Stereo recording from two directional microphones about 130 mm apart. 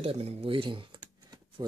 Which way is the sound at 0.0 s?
50° right (ahead or behind).